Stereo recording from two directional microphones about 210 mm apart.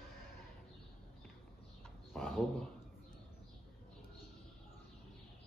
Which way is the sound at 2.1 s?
Centre (ahead or behind).